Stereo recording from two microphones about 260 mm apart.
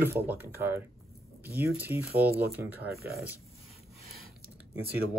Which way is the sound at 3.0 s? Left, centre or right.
Right.